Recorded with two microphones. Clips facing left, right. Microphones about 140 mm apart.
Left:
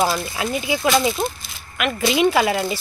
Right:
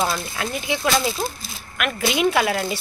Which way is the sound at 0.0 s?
5° left (ahead or behind).